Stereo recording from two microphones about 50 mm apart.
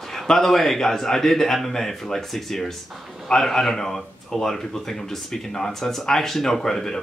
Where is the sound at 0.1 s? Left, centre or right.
Centre.